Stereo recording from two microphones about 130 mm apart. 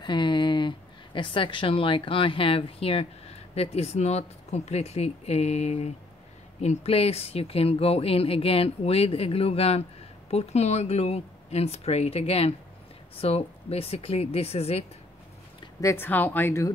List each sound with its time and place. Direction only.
0.0 s speech: 35° left (ahead or behind); by 14.9 s 50° left (ahead or behind)
15.8 s speech: 20° left (ahead or behind)